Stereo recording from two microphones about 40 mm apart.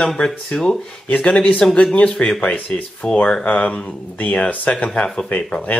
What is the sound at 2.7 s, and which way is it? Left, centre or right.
Speech, left.